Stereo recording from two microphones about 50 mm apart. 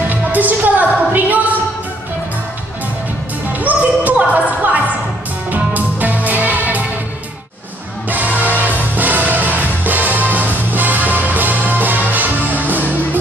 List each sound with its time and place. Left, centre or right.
0.1 s music: right
3.5 s music: right
5.5 s music: right
8.1 s music: right